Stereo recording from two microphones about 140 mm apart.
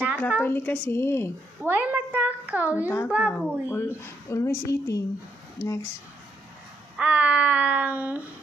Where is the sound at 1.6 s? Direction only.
10° right (ahead or behind).